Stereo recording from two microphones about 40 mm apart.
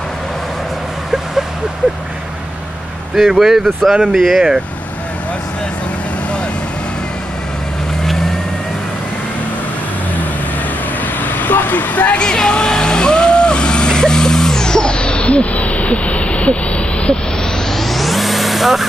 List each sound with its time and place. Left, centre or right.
3.3 s speech: centre
11.1 s vehicle: left
12.2 s vehicle: left
17.6 s music: centre